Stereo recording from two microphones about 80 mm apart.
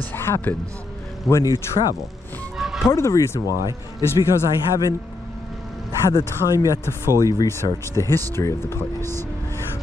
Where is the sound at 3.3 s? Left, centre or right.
Left.